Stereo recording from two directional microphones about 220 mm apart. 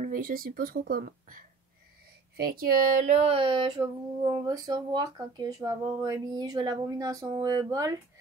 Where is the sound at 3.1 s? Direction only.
25° right (ahead or behind).